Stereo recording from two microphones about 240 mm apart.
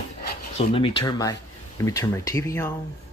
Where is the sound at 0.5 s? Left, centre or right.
Left.